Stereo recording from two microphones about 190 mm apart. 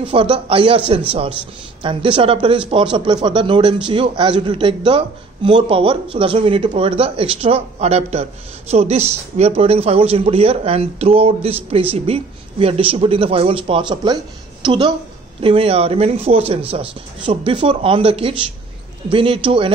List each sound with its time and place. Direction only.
0.0 s a man's voice: 30° right (ahead or behind)